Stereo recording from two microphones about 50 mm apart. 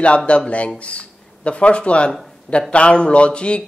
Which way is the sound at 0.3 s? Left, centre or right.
Left.